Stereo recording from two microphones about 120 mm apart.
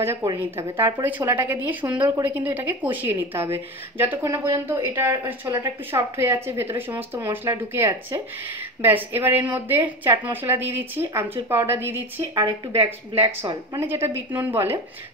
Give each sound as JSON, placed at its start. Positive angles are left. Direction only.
{"t": 0.0, "sound": "a woman's voice", "side_deg": -20}
{"t": 12.4, "sound": "speech", "side_deg": -50}
{"t": 13.8, "sound": "speech", "side_deg": -20}